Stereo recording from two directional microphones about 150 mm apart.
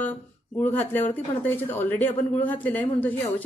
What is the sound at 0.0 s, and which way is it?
Speech, 10° left (ahead or behind).